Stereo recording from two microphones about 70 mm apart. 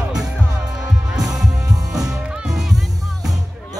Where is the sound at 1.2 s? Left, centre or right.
Right.